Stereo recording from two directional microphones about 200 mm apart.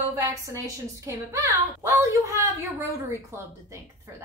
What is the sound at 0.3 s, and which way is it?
A woman's voice, 15° right (ahead or behind).